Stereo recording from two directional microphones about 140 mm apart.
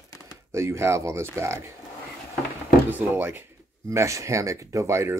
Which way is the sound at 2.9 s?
15° right (ahead or behind).